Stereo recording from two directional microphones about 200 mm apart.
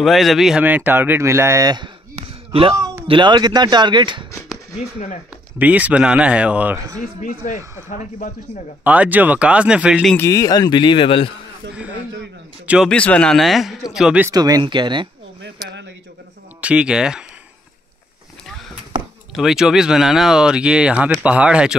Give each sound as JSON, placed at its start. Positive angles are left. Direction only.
{"t": 0.0, "sound": "speech", "side_deg": 0}
{"t": 5.3, "sound": "speech", "side_deg": -5}
{"t": 8.8, "sound": "speech", "side_deg": -5}
{"t": 10.1, "sound": "speech", "side_deg": 15}
{"t": 12.6, "sound": "speech", "side_deg": 0}
{"t": 14.3, "sound": "speech", "side_deg": -20}
{"t": 15.4, "sound": "speech", "side_deg": -60}
{"t": 16.6, "sound": "speech", "side_deg": -5}
{"t": 19.3, "sound": "speech", "side_deg": 0}